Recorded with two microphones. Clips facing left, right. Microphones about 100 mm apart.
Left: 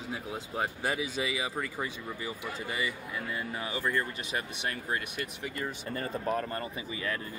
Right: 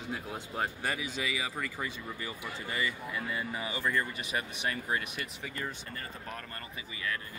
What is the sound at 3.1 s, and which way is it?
Speech, centre (ahead or behind).